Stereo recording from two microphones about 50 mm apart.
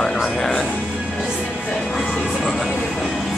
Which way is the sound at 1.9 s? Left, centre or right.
Centre.